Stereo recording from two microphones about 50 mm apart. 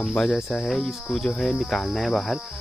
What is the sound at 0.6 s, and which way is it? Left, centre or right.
Speech, centre.